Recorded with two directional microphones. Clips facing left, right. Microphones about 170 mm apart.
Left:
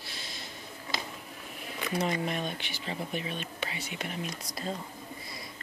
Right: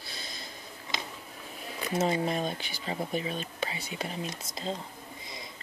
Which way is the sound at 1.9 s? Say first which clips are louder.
Right 3 dB; 30° right (ahead or behind).